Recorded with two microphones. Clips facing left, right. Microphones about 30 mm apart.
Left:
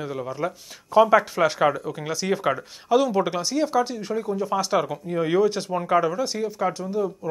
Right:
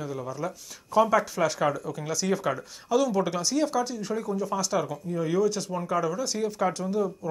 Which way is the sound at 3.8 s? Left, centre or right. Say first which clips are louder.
Left 4 dB; left.